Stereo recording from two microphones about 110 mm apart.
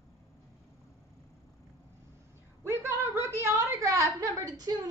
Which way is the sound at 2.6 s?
25° right (ahead or behind).